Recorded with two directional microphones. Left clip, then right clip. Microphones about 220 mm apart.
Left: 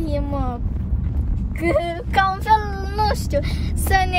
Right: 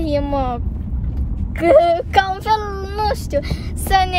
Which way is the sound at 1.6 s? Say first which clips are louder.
Right 10 dB; 20° right (ahead or behind).